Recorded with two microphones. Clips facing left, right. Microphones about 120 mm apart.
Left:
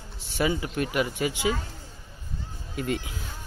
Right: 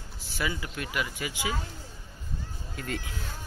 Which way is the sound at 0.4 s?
25° left (ahead or behind).